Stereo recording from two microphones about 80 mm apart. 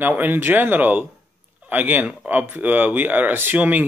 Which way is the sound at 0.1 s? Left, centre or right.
Right.